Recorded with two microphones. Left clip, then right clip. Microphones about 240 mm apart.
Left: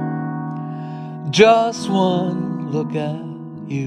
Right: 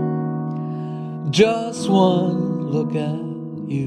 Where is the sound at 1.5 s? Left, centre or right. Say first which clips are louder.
Left 9 dB; left.